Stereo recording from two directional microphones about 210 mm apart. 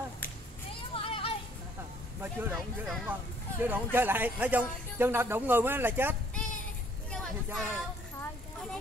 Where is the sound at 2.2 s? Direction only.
5° right (ahead or behind).